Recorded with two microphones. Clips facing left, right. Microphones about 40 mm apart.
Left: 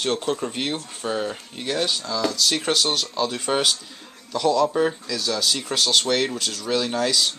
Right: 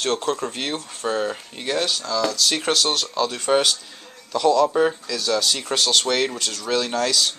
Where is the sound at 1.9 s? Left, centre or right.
Centre.